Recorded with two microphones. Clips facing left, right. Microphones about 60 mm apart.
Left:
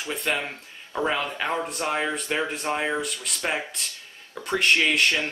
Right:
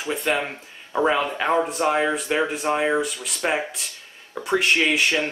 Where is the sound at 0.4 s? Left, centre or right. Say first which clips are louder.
Right 4 dB; centre.